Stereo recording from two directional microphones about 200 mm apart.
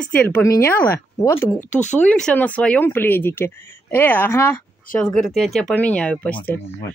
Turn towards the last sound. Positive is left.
turn(degrees=5)  # may be behind; listen again after turning